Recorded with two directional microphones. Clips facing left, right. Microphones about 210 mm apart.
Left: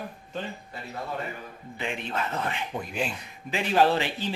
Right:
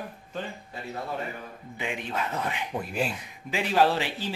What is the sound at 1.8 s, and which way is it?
Speech, 10° right (ahead or behind).